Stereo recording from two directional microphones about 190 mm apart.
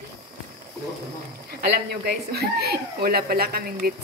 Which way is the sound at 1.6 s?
55° right (ahead or behind).